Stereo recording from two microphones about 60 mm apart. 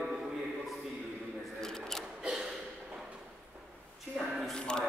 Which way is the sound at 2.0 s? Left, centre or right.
Centre.